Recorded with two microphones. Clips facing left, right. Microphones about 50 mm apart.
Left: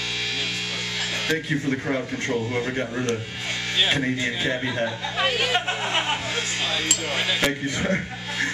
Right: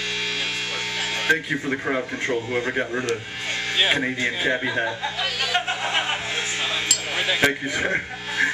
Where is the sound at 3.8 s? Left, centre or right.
Centre.